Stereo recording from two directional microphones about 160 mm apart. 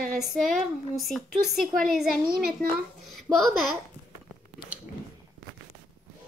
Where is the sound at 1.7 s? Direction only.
60° right (ahead or behind).